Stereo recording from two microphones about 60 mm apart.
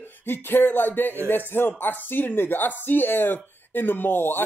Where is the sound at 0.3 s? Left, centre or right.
Left.